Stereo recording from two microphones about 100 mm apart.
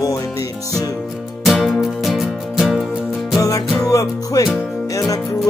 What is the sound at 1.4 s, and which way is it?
Music, centre (ahead or behind).